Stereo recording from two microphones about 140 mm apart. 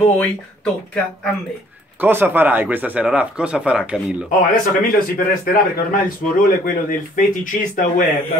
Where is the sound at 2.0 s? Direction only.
15° right (ahead or behind).